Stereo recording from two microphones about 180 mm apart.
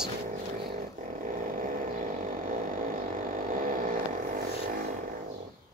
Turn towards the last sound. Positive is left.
turn(degrees=-50)  # may be behind; listen again after turning